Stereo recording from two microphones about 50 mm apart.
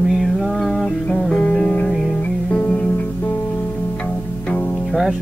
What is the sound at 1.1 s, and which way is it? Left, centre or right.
Music, centre.